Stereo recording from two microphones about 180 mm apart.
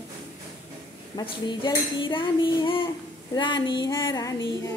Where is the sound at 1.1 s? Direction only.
25° left (ahead or behind).